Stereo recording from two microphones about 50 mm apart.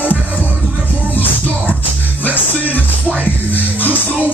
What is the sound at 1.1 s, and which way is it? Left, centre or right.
Music, left.